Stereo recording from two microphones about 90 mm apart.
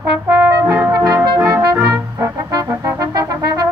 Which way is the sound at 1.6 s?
35° right (ahead or behind).